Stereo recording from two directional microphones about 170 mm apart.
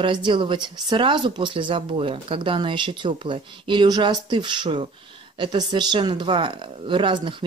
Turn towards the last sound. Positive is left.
turn(degrees=-30)  # may be behind; listen again after turning